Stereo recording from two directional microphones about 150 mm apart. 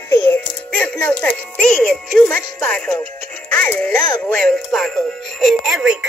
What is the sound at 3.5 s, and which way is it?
Speech, 10° left (ahead or behind).